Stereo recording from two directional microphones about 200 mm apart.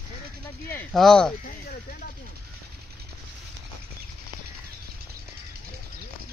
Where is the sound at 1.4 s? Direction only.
45° left (ahead or behind).